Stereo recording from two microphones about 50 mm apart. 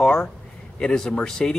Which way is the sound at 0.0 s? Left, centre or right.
Centre.